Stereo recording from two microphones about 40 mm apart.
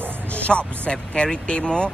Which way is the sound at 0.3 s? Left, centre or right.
Left.